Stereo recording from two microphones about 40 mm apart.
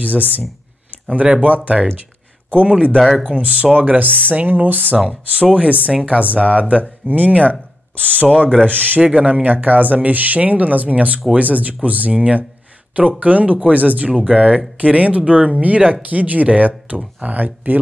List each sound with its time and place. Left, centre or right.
0.0 s speech: right
5.0 s speech: right
8.6 s speech: right